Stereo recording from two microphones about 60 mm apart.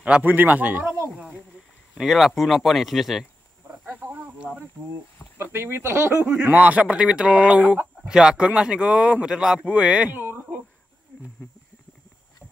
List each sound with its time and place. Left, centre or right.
0.0 s speech: right
2.0 s speech: centre
3.8 s a sound: right
5.4 s speech: right
6.1 s speech: right
8.1 s speech: centre
9.7 s speech: centre
10.0 s a sound: right